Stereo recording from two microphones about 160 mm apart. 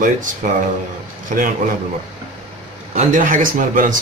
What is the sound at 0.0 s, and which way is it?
Speech, 55° right (ahead or behind).